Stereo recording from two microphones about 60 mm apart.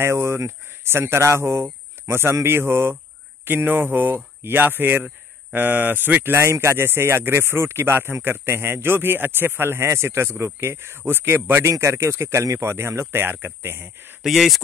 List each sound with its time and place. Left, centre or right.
0.0 s speech: right
6.3 s speech: right
11.8 s speech: right
14.2 s speech: centre